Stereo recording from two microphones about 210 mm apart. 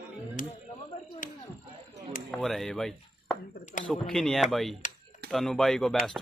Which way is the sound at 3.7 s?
35° left (ahead or behind).